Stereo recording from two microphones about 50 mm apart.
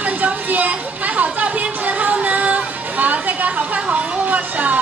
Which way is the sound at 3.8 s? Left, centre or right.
Right.